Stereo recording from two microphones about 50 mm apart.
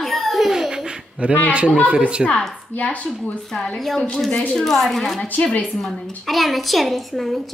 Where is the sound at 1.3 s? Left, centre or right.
Left.